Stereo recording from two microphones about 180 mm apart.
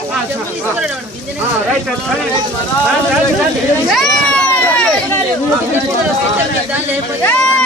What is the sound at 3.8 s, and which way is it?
Children playing, centre (ahead or behind).